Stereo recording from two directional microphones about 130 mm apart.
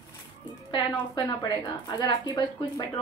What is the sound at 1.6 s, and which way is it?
A woman's voice, 35° left (ahead or behind).